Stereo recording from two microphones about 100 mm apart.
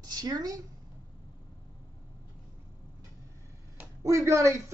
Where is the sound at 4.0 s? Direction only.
30° right (ahead or behind).